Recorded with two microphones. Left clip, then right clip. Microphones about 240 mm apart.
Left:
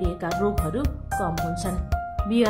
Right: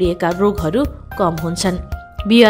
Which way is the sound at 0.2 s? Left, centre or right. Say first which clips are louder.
Right 9 dB; right.